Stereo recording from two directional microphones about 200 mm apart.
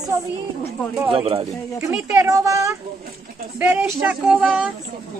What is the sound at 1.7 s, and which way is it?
Speech, 10° right (ahead or behind).